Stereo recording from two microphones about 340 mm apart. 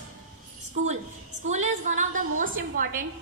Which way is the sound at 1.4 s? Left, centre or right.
Right.